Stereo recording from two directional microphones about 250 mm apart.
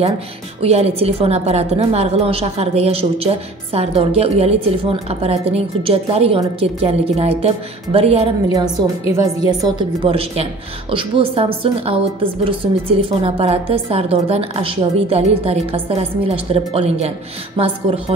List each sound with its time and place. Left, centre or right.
0.6 s a woman's voice: right